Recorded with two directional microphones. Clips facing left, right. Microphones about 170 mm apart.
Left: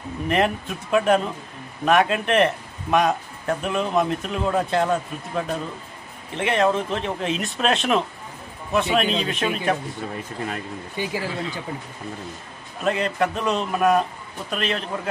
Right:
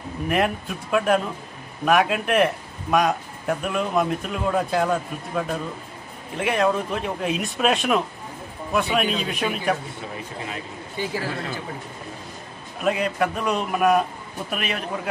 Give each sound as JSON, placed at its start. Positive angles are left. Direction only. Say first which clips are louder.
{"t": 0.3, "sound": "speech", "louder": "left 1 dB", "side_deg": 0}
{"t": 11.0, "sound": "speech", "louder": "even", "side_deg": 15}
{"t": 12.8, "sound": "a man's voice", "louder": "even", "side_deg": -5}